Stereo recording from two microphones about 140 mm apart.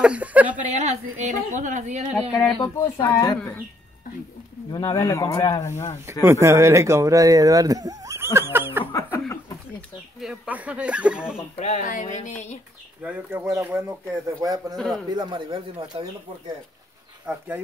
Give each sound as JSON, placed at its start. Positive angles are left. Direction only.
{"t": 0.0, "sound": "speech", "side_deg": -10}
{"t": 0.6, "sound": "speech", "side_deg": -65}
{"t": 2.8, "sound": "speech", "side_deg": 25}
{"t": 4.7, "sound": "speech", "side_deg": 25}
{"t": 6.1, "sound": "speech", "side_deg": -15}
{"t": 10.2, "sound": "speech", "side_deg": -10}
{"t": 11.5, "sound": "music", "side_deg": 55}
{"t": 13.0, "sound": "speech", "side_deg": -15}